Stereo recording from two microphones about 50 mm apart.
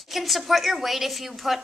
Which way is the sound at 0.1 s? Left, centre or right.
Centre.